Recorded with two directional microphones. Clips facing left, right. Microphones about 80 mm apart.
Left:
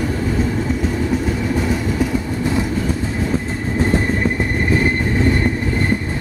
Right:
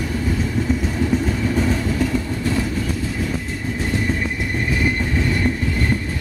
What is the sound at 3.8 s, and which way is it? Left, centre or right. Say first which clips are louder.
Train: left 6 dB; left.